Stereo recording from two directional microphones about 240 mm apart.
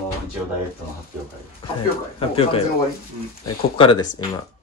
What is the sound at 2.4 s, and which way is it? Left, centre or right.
Speech, left.